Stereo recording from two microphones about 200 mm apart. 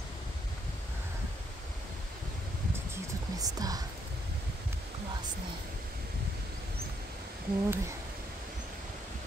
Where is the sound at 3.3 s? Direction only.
20° right (ahead or behind).